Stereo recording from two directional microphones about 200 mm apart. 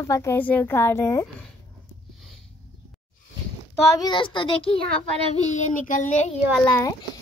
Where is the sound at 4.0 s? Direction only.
20° left (ahead or behind).